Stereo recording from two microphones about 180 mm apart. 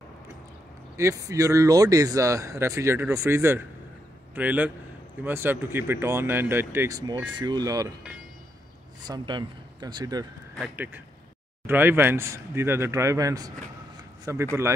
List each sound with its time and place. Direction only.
0.9 s speech: 15° right (ahead or behind)
9.0 s speech: 25° right (ahead or behind)
11.6 s speech: 10° right (ahead or behind)